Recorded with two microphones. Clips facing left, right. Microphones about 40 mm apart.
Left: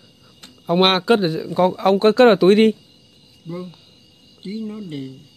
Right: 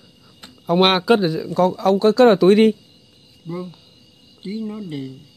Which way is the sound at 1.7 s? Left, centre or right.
Left.